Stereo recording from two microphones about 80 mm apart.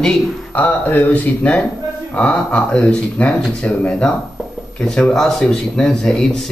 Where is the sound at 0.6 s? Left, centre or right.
Left.